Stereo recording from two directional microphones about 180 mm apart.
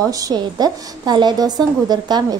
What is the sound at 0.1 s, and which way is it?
A woman's voice, 20° right (ahead or behind).